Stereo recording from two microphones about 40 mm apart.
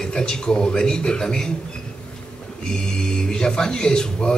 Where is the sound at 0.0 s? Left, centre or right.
Centre.